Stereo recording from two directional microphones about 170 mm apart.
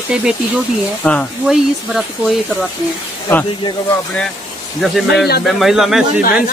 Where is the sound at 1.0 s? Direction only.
5° left (ahead or behind).